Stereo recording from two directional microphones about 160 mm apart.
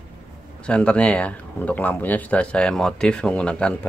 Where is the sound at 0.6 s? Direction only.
5° left (ahead or behind).